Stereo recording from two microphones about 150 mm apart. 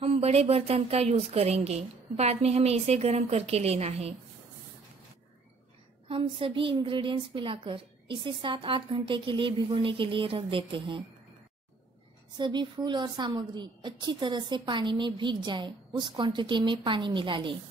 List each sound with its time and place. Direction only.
0.0 s a woman's voice: 40° right (ahead or behind)
6.0 s a woman's voice: 35° right (ahead or behind)
12.4 s a woman's voice: 30° right (ahead or behind)